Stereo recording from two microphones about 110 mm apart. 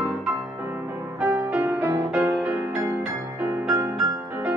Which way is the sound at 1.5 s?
20° right (ahead or behind).